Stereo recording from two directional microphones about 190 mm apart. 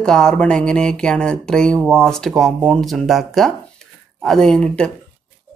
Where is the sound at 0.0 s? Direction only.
5° left (ahead or behind).